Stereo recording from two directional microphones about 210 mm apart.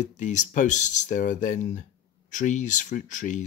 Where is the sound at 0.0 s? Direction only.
35° left (ahead or behind).